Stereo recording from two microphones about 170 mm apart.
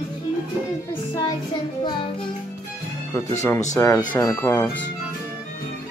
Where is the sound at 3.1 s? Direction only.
10° left (ahead or behind).